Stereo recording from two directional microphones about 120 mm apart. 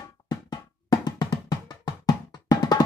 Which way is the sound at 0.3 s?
35° left (ahead or behind).